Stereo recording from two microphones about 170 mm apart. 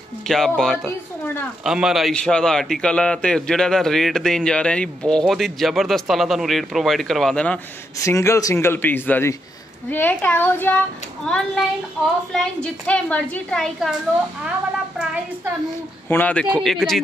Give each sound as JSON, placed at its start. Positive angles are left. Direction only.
{"t": 0.3, "sound": "a man's voice", "side_deg": 0}
{"t": 8.0, "sound": "a man's voice", "side_deg": 15}
{"t": 12.6, "sound": "a man's voice", "side_deg": 10}
{"t": 16.1, "sound": "a man's voice", "side_deg": 10}